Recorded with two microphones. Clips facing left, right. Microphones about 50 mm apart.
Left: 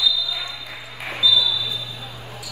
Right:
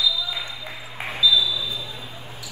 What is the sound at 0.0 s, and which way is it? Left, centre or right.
Ping, right.